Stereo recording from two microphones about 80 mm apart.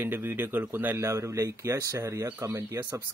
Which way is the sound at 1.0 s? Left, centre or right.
Right.